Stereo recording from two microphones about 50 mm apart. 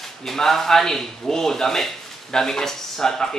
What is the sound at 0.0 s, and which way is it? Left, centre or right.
Speech, centre.